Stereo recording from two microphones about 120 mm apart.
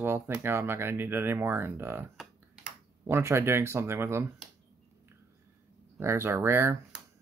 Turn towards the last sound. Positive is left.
turn(degrees=-20)  # may be behind; listen again after turning